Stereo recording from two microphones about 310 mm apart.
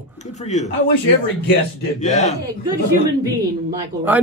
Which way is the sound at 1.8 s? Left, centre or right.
Left.